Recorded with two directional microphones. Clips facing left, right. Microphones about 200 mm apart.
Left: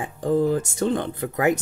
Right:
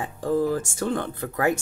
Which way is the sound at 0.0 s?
20° left (ahead or behind).